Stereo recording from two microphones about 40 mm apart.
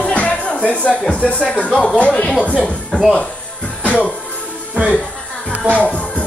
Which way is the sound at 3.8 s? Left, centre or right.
Left.